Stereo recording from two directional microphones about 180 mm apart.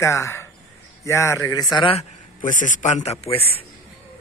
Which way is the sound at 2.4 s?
45° left (ahead or behind).